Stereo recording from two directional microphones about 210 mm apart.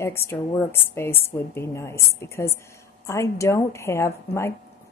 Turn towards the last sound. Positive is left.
turn(degrees=10)  # may be behind; listen again after turning